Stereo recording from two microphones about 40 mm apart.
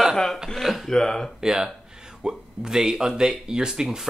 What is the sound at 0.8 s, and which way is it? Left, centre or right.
Speech, centre.